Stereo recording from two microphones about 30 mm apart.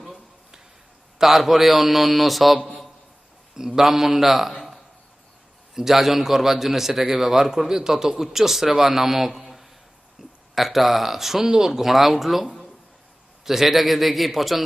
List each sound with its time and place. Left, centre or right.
1.2 s a man's voice: centre
3.5 s a man's voice: centre
4.6 s a sound: centre
5.8 s a man's voice: centre
11.9 s a man's voice: centre